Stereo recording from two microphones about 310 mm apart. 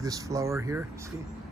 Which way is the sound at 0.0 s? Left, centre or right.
Centre.